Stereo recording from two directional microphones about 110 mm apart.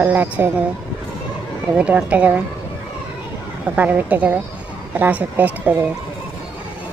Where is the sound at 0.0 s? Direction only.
15° right (ahead or behind).